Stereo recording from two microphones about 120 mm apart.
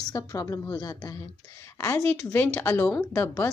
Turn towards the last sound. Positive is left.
turn(degrees=20)  # may be behind; listen again after turning